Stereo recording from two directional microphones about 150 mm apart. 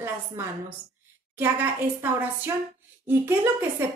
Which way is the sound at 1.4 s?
15° right (ahead or behind).